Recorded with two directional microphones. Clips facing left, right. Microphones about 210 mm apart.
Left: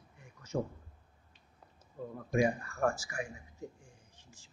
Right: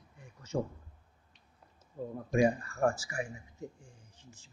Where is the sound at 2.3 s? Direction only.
25° right (ahead or behind).